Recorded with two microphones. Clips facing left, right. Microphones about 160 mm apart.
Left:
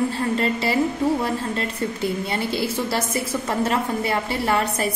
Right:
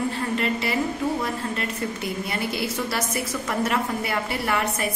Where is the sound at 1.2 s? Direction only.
30° left (ahead or behind).